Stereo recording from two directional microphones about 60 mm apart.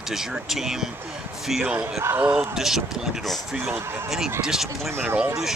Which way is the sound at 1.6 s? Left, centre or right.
Centre.